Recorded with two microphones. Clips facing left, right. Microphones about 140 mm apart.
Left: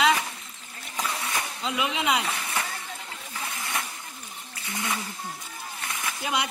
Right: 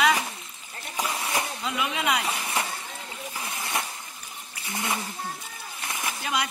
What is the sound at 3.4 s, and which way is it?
Hiss, 25° right (ahead or behind).